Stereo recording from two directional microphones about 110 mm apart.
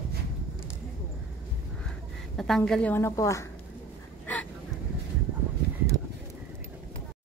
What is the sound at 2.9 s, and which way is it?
Speech, 25° left (ahead or behind).